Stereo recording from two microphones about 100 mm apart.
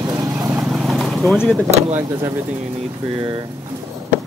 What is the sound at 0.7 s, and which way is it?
Vehicle, centre (ahead or behind).